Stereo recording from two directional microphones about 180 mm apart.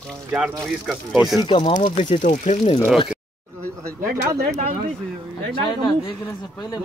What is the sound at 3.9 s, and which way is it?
Speech, 60° right (ahead or behind).